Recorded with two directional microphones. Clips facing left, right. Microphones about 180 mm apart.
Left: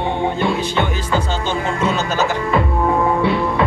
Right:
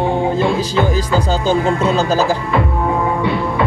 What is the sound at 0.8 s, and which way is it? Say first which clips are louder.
Music: right 4 dB; 35° right (ahead or behind).